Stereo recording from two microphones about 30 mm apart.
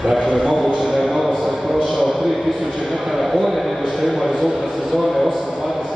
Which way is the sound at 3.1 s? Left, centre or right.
Centre.